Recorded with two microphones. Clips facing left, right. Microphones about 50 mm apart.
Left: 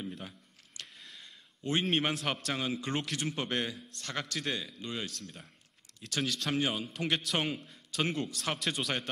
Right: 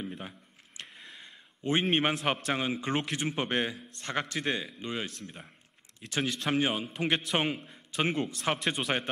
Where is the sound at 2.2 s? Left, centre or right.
Right.